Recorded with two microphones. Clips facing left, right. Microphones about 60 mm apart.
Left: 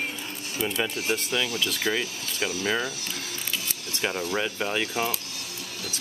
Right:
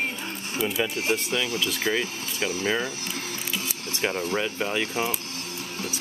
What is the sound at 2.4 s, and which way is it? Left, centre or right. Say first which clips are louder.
Speech: right 1 dB; right.